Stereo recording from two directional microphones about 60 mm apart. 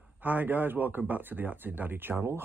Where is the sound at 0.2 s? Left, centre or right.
Right.